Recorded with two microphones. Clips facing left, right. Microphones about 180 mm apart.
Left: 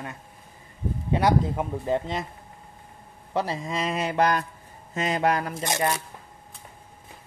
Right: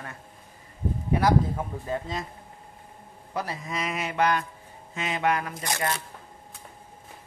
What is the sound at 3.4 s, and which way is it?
Speech, 25° left (ahead or behind).